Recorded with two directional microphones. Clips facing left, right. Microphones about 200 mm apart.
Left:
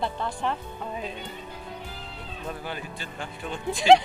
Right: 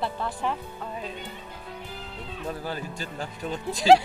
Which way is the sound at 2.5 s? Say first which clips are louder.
Right 2 dB; 40° right (ahead or behind).